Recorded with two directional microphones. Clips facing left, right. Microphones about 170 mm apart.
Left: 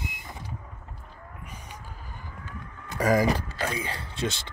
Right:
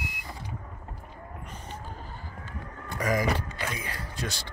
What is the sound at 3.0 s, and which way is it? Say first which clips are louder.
Speech: left 4 dB; 35° left (ahead or behind).